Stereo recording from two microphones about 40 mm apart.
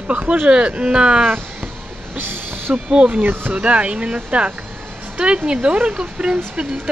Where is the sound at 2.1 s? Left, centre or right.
Right.